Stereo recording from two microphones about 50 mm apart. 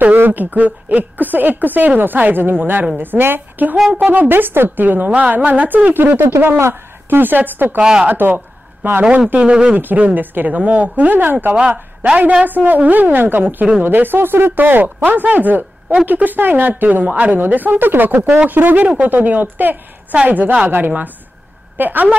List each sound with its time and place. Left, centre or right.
0.0 s a woman's voice: right
3.7 s speech: centre
4.0 s a woman's voice: right
5.1 s a woman's voice: right
6.1 s a woman's voice: right
9.3 s speech: right
9.8 s a woman's voice: right
12.2 s speech: right
12.4 s a woman's voice: right